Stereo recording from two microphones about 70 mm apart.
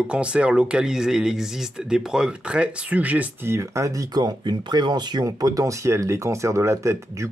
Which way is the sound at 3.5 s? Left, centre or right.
Right.